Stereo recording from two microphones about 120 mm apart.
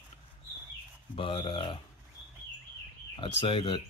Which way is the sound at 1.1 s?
45° left (ahead or behind).